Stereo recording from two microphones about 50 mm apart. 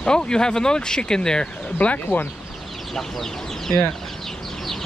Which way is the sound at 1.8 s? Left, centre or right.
Left.